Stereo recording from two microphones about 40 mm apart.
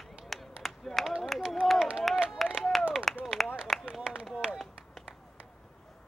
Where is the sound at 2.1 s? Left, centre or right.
Right.